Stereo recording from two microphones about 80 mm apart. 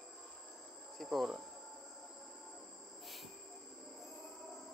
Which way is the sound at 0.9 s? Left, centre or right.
Centre.